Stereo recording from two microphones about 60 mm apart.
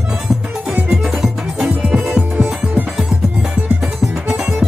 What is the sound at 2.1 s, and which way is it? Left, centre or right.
Music, right.